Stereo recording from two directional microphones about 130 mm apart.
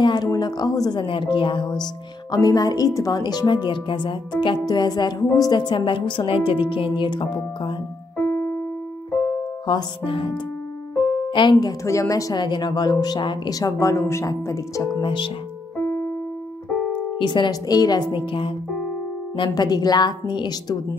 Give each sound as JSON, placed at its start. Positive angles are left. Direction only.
{"t": 0.0, "sound": "speech", "side_deg": 30}
{"t": 8.3, "sound": "keyboard", "side_deg": 25}
{"t": 9.7, "sound": "speech", "side_deg": 40}
{"t": 11.8, "sound": "speech", "side_deg": 25}
{"t": 15.0, "sound": "speech", "side_deg": 40}
{"t": 17.2, "sound": "speech", "side_deg": 35}